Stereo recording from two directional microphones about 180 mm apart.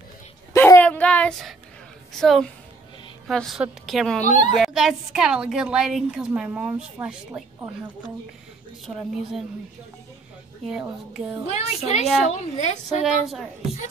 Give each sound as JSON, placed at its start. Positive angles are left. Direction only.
{"t": 0.5, "sound": "a sound", "side_deg": 15}
{"t": 2.1, "sound": "a woman's voice", "side_deg": 0}
{"t": 4.3, "sound": "a child's voice", "side_deg": 40}
{"t": 4.6, "sound": "a woman's voice", "side_deg": -5}
{"t": 10.6, "sound": "a woman's voice", "side_deg": 0}
{"t": 11.4, "sound": "a woman's voice", "side_deg": 35}